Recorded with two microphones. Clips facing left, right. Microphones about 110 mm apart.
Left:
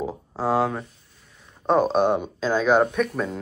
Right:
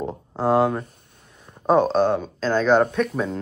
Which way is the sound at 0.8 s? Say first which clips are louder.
Right 2 dB; 55° right (ahead or behind).